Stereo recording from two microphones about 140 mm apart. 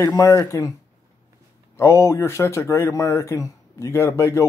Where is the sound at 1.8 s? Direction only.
20° left (ahead or behind).